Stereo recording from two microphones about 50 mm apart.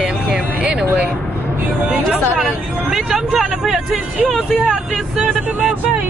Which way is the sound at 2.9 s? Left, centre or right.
Centre.